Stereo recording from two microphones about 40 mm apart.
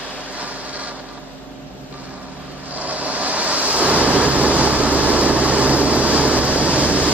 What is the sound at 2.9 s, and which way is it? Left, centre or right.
Vehicle, right.